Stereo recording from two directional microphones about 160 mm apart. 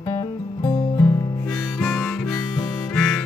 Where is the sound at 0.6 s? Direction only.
20° left (ahead or behind).